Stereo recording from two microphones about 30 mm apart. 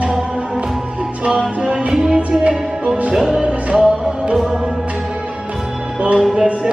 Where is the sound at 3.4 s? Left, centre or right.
Right.